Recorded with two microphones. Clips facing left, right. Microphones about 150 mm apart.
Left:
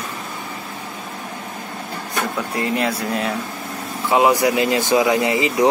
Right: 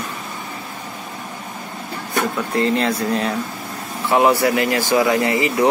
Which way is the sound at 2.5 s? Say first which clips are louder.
Right 4 dB; 10° left (ahead or behind).